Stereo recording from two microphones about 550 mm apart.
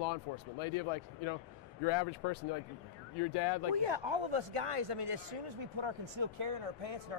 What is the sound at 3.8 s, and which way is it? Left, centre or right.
Speech, right.